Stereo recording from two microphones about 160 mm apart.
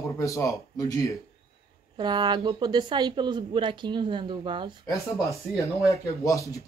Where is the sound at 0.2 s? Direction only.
20° left (ahead or behind).